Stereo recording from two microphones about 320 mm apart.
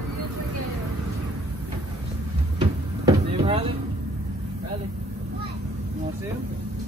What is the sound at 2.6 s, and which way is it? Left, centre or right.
Vehicle, centre.